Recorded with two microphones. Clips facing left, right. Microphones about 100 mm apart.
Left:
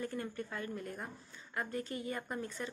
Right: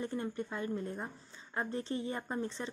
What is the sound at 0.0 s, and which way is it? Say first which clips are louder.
A woman's voice: right 3 dB; 25° right (ahead or behind).